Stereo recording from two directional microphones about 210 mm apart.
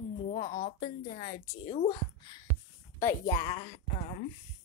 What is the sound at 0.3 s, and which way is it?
A woman's voice, 35° left (ahead or behind).